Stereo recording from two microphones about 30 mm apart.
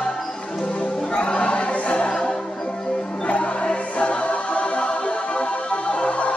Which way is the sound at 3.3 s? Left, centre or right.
Left.